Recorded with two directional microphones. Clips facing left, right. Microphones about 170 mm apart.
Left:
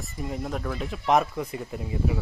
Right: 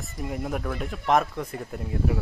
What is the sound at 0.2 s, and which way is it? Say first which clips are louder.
Speech: right 1 dB; 5° right (ahead or behind).